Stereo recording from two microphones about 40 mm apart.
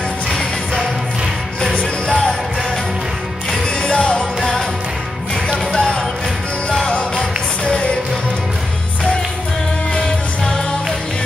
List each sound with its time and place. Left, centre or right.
3.8 s music: left
5.8 s music: centre
9.9 s music: centre